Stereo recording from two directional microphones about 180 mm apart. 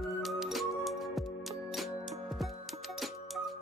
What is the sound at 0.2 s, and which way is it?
Music, centre (ahead or behind).